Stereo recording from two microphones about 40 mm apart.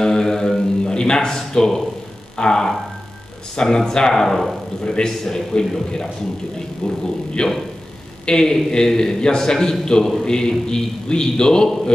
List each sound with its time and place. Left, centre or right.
0.0 s music: centre
0.8 s a sound: left
2.3 s a man's voice: centre
4.8 s a man's voice: centre
6.8 s a man's voice: centre